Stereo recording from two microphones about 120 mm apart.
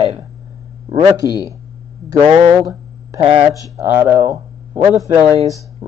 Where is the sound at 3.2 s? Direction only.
60° right (ahead or behind).